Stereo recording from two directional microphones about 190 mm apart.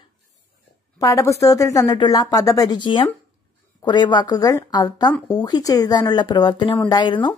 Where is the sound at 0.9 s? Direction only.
15° left (ahead or behind).